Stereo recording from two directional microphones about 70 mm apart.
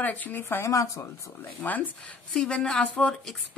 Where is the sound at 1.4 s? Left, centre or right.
Left.